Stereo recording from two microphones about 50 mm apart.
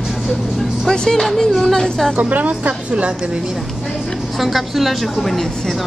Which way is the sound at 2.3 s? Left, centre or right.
Right.